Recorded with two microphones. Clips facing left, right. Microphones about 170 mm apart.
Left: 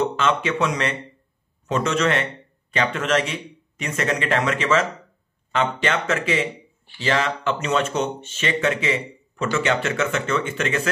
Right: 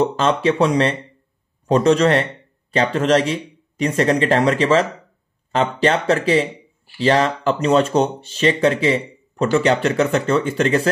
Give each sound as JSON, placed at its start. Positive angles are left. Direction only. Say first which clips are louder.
{"t": 0.0, "sound": "speech", "louder": "right 5 dB", "side_deg": -35}